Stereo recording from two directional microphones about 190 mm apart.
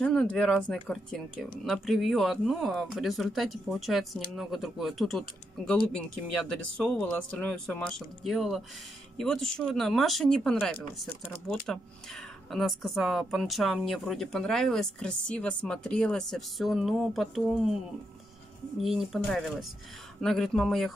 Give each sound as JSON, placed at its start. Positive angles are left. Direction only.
{"t": 0.0, "sound": "speech", "side_deg": 5}
{"t": 18.8, "sound": "speech", "side_deg": 0}